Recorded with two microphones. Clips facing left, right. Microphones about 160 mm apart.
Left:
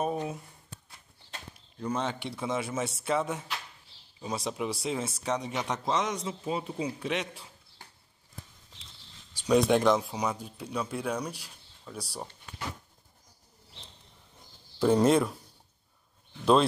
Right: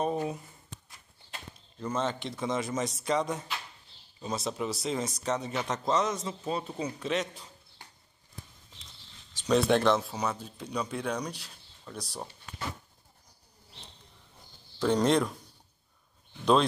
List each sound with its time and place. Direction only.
0.2 s shuffling cards: centre (ahead or behind)
1.8 s speech: 10° left (ahead or behind)
9.3 s speech: 10° left (ahead or behind)
14.8 s speech: 5° left (ahead or behind)